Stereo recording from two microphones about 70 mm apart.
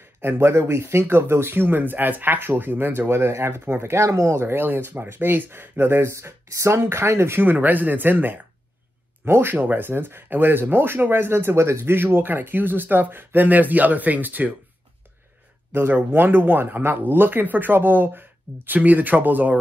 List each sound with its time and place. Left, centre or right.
0.2 s speech: right
15.7 s speech: right